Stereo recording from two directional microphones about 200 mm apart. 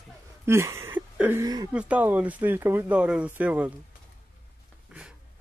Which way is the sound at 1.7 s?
5° right (ahead or behind).